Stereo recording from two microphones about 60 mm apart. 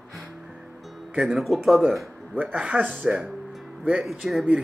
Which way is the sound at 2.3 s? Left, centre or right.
Right.